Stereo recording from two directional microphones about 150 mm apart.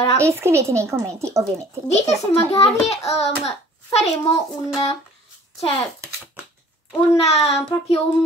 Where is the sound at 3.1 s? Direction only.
45° left (ahead or behind).